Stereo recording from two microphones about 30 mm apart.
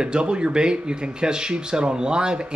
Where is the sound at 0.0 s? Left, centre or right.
Right.